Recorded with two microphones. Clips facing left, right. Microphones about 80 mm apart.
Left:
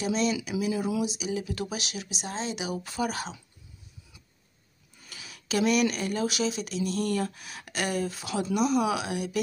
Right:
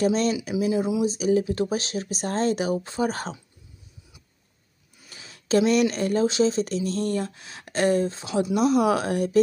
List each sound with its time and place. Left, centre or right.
0.0 s speech: right
1.0 s speech: right
2.8 s speech: right
5.1 s speech: right
8.5 s speech: right